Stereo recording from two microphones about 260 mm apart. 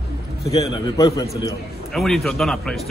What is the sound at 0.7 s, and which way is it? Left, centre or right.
Speech, centre.